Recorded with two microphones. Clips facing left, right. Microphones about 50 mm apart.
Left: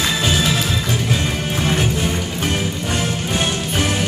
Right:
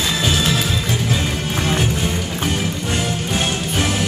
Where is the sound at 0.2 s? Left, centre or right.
Centre.